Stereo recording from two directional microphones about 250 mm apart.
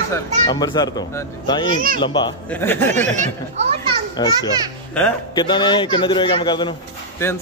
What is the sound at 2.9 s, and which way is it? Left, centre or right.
Speech, right.